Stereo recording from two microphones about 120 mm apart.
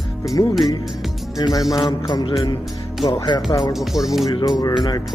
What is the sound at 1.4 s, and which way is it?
Music, 30° left (ahead or behind).